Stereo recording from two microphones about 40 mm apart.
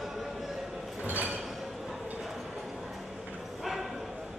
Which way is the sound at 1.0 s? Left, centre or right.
Right.